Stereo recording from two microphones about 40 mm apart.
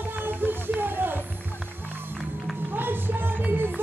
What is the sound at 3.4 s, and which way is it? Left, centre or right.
Music, right.